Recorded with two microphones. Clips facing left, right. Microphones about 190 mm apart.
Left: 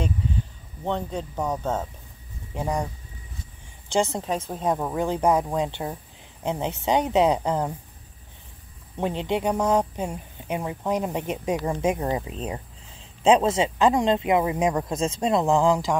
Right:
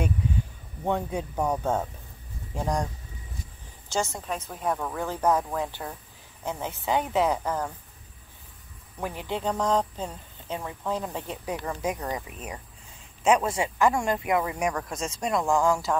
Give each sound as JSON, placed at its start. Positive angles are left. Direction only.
{"t": 0.8, "sound": "speech", "side_deg": -10}
{"t": 2.5, "sound": "speech", "side_deg": 5}
{"t": 3.9, "sound": "speech", "side_deg": 20}
{"t": 8.9, "sound": "speech", "side_deg": 25}
{"t": 13.6, "sound": "speech", "side_deg": 20}